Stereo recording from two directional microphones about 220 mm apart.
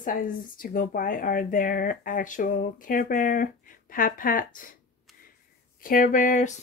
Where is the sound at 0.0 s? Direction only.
40° left (ahead or behind).